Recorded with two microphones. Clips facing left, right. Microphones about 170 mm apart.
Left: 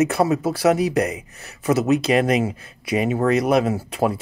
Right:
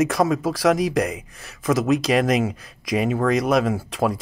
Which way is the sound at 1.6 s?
5° left (ahead or behind).